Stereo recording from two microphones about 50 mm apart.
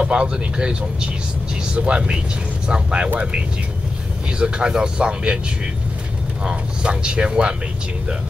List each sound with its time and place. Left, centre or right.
0.0 s speech: centre
6.4 s speech: centre